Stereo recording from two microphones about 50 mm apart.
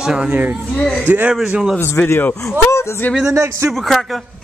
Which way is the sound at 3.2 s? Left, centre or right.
Right.